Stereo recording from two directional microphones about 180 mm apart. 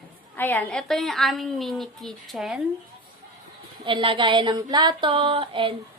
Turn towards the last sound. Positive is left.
turn(degrees=-30)  # may be behind; listen again after turning